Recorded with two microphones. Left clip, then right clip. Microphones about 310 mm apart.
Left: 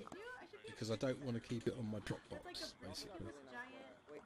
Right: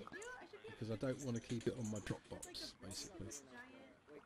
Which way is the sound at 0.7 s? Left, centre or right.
Left.